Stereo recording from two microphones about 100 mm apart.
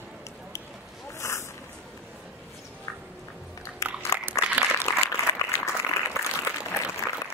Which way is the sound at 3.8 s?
30° left (ahead or behind).